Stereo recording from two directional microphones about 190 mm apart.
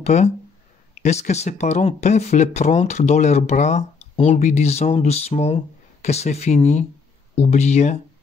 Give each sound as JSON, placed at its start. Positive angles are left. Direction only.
{"t": 0.0, "sound": "speech", "side_deg": 35}